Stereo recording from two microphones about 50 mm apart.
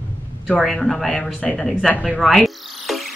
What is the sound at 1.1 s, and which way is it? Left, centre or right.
Speech, centre.